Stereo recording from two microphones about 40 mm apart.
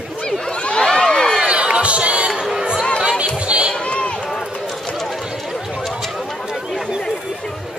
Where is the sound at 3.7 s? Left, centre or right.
Left.